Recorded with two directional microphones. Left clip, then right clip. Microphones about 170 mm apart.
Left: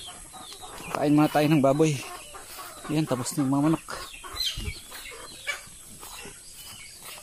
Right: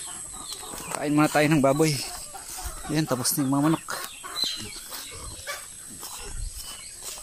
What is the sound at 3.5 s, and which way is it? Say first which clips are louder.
Speech: even; 10° right (ahead or behind).